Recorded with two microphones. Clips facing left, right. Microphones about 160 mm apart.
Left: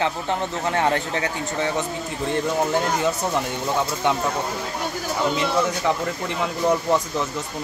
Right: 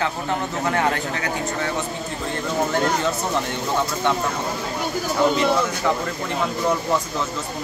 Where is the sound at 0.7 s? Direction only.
25° left (ahead or behind).